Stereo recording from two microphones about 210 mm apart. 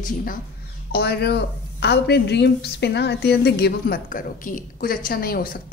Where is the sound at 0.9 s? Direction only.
50° left (ahead or behind).